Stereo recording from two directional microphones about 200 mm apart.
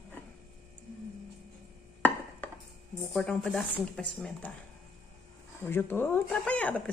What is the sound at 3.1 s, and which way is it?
A woman's voice, centre (ahead or behind).